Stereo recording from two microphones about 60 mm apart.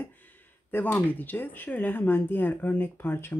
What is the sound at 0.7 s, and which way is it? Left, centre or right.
Speech, left.